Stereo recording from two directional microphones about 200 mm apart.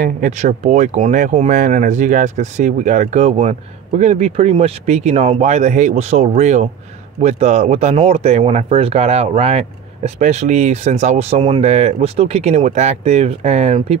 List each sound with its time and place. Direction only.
0.0 s speech: 40° right (ahead or behind)